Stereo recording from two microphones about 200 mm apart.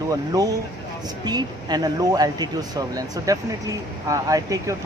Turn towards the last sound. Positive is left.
turn(degrees=-15)  # may be behind; listen again after turning